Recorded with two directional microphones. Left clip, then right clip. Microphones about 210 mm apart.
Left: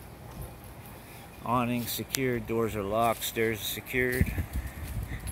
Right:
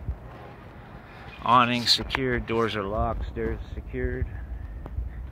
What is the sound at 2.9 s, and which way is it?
Speech, 20° left (ahead or behind).